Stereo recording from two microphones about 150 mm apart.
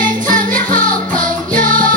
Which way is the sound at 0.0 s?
65° right (ahead or behind).